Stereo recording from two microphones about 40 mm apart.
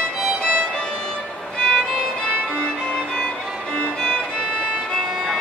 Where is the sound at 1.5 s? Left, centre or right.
Left.